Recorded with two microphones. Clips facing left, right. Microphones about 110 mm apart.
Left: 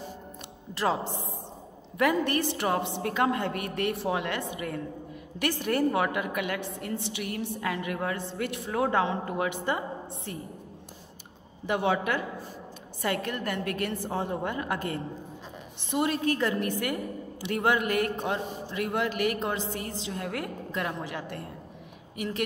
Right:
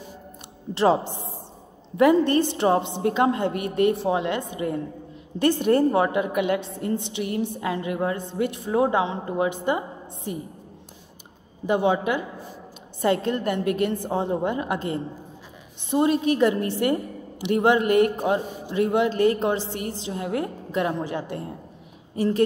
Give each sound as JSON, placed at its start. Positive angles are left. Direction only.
{"t": 2.0, "sound": "a woman's voice", "side_deg": -25}
{"t": 11.6, "sound": "a woman's voice", "side_deg": -20}